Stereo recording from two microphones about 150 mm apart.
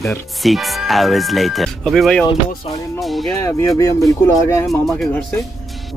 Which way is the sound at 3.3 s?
20° left (ahead or behind).